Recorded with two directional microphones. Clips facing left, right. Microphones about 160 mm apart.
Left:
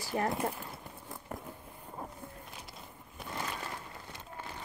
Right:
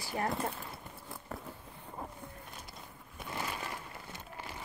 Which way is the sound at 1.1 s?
15° left (ahead or behind).